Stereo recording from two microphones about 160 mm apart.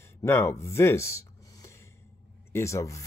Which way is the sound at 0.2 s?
15° left (ahead or behind).